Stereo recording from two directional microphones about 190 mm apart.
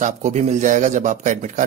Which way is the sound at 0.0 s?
40° right (ahead or behind).